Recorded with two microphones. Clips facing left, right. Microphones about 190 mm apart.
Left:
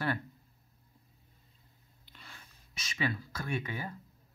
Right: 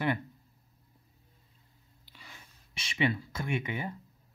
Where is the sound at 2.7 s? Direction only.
30° right (ahead or behind).